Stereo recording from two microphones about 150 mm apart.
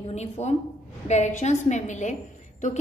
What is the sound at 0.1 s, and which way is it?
A woman's voice, 45° left (ahead or behind).